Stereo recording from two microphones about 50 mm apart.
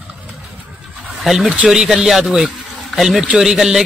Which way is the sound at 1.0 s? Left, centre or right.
Centre.